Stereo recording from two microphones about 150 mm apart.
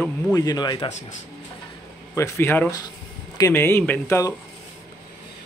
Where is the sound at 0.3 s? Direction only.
25° left (ahead or behind).